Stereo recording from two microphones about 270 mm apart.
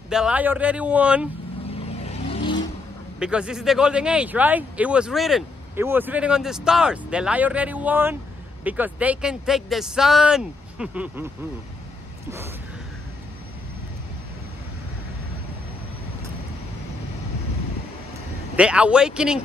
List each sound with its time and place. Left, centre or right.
0.1 s speech: centre
2.0 s vehicle: left
3.2 s speech: centre
18.6 s speech: centre